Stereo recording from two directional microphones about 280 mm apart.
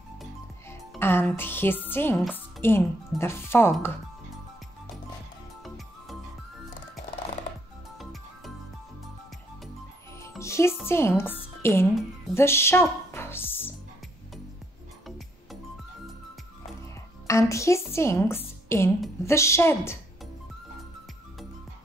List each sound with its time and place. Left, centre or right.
0.2 s music: centre
10.2 s music: centre
10.9 s a woman's voice: centre
11.6 s music: centre
17.3 s a woman's voice: centre